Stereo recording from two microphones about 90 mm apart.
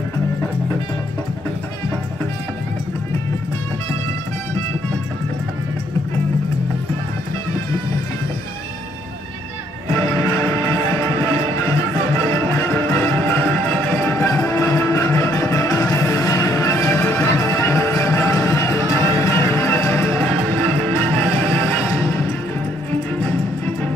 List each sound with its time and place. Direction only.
9.9 s music: 35° left (ahead or behind)